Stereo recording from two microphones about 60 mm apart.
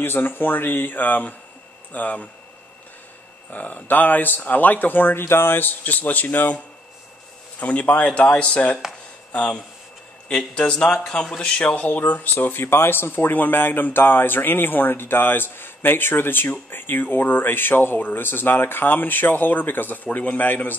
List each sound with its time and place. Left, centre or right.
0.0 s speech: left
3.5 s speech: left
7.6 s a man's voice: left
11.6 s speech: left